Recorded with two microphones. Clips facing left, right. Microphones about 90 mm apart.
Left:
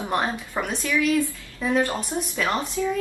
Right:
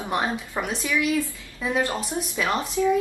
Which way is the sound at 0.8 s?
10° right (ahead or behind).